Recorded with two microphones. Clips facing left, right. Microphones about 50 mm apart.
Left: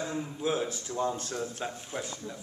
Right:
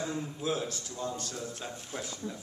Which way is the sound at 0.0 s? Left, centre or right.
Centre.